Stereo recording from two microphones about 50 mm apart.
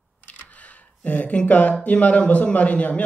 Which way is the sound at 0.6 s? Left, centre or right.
Left.